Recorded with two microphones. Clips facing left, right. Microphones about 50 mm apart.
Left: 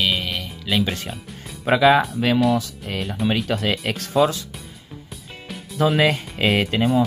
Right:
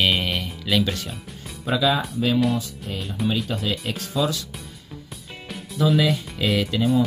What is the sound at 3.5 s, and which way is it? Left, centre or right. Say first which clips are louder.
Speech: left 4 dB; left.